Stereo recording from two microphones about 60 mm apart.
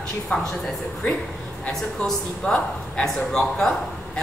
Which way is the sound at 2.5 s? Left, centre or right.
Left.